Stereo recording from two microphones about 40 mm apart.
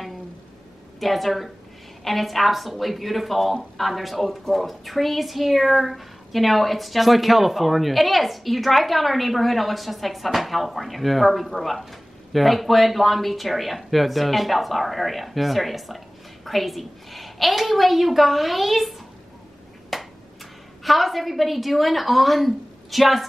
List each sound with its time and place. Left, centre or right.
0.9 s a woman's voice: centre
19.9 s a sound: centre
20.8 s a woman's voice: centre